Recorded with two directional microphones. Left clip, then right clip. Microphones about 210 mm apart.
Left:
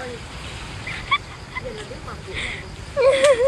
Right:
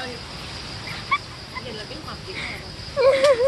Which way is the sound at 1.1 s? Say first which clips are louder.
Left 2 dB; 5° left (ahead or behind).